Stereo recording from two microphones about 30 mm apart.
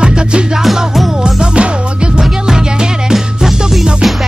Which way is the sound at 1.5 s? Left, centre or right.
Right.